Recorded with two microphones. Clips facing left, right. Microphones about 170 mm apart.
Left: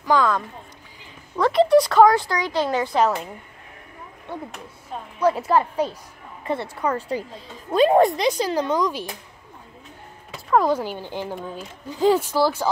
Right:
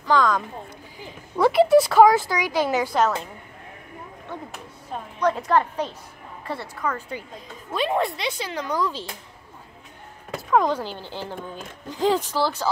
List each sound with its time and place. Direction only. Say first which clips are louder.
0.0 s speech: left 1 dB; 10° left (ahead or behind)
1.3 s speech: even; 10° right (ahead or behind)
4.5 s speech: even; 5° left (ahead or behind)
6.4 s a woman's voice: left 4 dB; 20° left (ahead or behind); by 8.6 s 40° left (ahead or behind)
8.6 s speech: left 3 dB; 20° left (ahead or behind)
10.5 s speech: left 2 dB; 10° left (ahead or behind)